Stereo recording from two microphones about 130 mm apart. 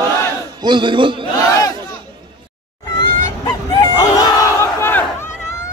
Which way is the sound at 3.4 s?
30° left (ahead or behind).